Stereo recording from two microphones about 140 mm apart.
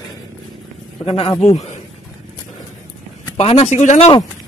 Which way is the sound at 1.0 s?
45° left (ahead or behind).